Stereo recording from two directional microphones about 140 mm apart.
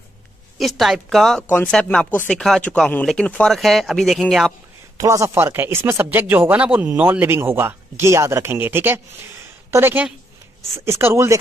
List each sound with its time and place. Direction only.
0.6 s speech: centre (ahead or behind)
4.9 s speech: 20° right (ahead or behind)